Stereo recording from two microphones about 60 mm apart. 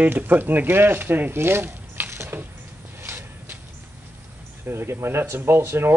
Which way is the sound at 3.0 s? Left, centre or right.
Right.